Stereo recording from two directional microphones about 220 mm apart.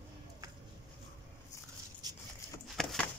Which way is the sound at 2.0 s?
20° right (ahead or behind).